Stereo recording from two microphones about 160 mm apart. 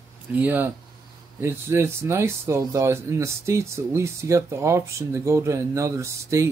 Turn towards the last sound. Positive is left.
turn(degrees=-15)  # may be behind; listen again after turning